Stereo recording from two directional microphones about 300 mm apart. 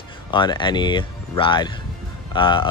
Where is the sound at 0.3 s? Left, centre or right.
Centre.